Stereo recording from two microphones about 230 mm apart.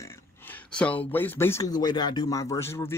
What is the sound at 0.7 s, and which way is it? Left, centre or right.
A man's voice, centre.